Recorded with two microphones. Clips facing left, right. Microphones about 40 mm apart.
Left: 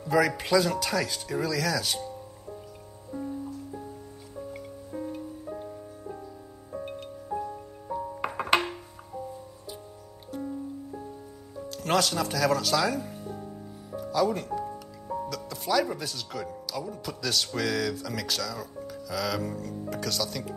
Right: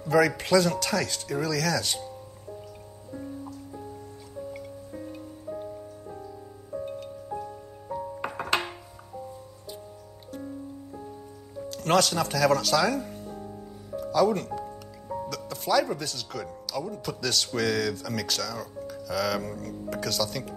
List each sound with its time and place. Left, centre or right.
0.0 s speech: centre
8.2 s music: centre
11.7 s speech: centre
14.1 s speech: centre